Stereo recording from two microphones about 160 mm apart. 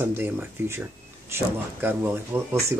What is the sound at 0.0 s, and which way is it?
Speech, 15° right (ahead or behind).